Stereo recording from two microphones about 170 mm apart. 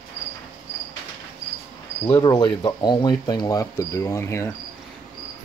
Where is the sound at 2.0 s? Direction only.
20° left (ahead or behind).